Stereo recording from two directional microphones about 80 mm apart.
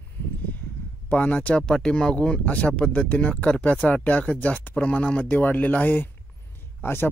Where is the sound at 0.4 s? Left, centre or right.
Left.